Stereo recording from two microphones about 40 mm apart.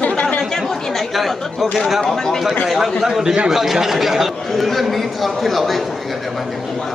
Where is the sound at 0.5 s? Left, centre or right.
Centre.